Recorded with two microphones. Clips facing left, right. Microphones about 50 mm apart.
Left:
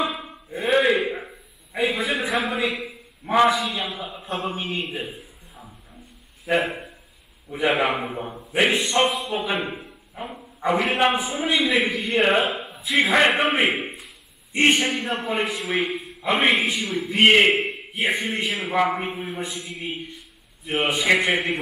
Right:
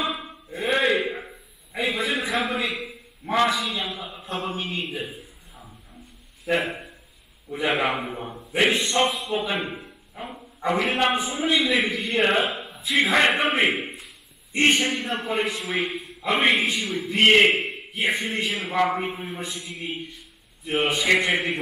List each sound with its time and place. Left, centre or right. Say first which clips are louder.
0.0 s a sound: left 2 dB; centre
3.5 s a man's voice: left 2 dB; centre
4.4 s a man's voice: left 1 dB; left; by 8.6 s centre
8.6 s a man's voice: left 1 dB; centre
9.1 s a man's voice: left 1 dB; centre
14.5 s a man's voice: left 1 dB; centre
14.8 s a man's voice: left 1 dB; centre